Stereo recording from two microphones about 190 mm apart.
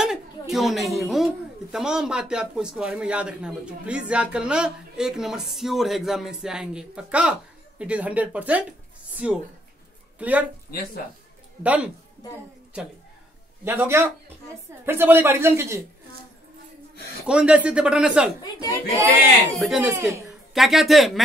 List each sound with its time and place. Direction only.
0.0 s a woman's voice: centre (ahead or behind)
11.6 s speech: 5° right (ahead or behind)
13.7 s speech: 10° right (ahead or behind)
17.3 s a woman's voice: 5° right (ahead or behind)
18.4 s speech: 20° left (ahead or behind)
19.5 s speech: centre (ahead or behind)
20.5 s a woman's voice: centre (ahead or behind)